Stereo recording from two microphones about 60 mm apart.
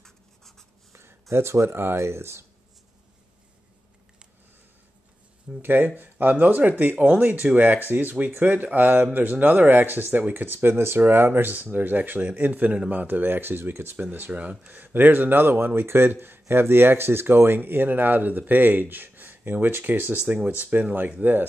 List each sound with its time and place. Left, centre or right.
0.0 s writing: centre
1.3 s speech: right
5.6 s speech: right
14.3 s speech: right